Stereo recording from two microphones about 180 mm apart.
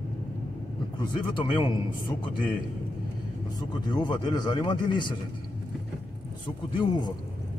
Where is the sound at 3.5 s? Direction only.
25° left (ahead or behind).